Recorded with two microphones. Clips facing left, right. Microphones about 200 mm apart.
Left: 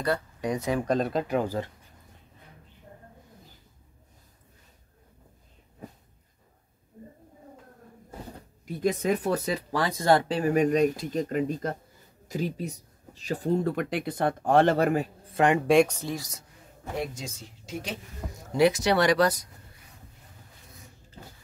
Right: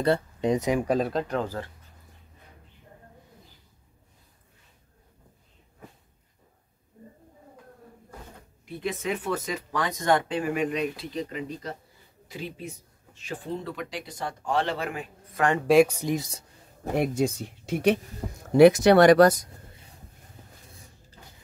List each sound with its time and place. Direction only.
0.0 s speech: 25° right (ahead or behind); by 1.7 s 15° left (ahead or behind)
8.6 s speech: 40° left (ahead or behind)
15.6 s speech: 5° right (ahead or behind)
16.3 s a sound: 30° right (ahead or behind)
16.9 s speech: 60° right (ahead or behind)